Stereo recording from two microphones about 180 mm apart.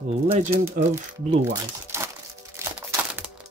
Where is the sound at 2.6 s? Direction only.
15° right (ahead or behind).